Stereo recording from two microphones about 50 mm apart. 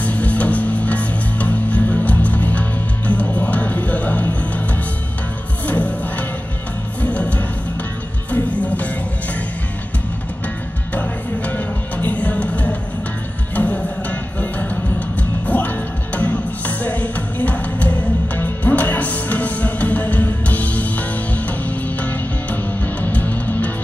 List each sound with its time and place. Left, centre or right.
0.0 s music: left
5.7 s music: left
11.0 s music: left